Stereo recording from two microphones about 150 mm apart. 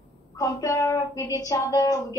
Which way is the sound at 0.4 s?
20° left (ahead or behind).